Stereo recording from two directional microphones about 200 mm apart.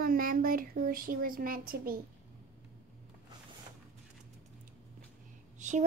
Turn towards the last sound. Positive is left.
turn(degrees=-35)  # may be behind; listen again after turning